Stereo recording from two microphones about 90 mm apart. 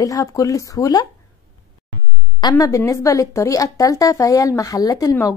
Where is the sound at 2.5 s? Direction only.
35° left (ahead or behind).